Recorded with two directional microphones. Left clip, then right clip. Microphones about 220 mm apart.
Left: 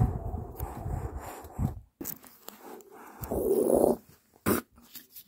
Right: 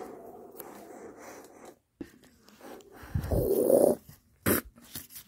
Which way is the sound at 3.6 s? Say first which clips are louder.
Right 5 dB; 10° right (ahead or behind).